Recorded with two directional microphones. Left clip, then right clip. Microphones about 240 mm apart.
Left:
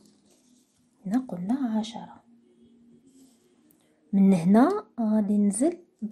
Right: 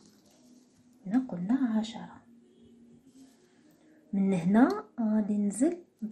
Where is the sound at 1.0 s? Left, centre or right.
Left.